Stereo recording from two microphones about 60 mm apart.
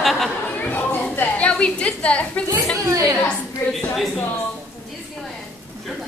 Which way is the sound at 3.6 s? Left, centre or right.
Left.